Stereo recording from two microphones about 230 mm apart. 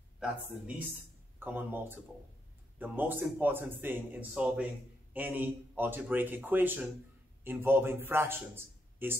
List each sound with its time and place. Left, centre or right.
0.2 s a man's voice: centre